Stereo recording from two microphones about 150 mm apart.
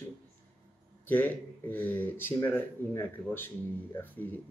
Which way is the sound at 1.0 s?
10° left (ahead or behind).